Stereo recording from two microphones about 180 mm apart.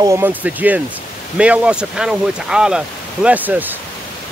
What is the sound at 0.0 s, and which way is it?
Speech, 15° right (ahead or behind).